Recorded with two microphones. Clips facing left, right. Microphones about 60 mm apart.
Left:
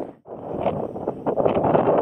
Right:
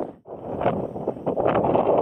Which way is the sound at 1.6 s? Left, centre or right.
Left.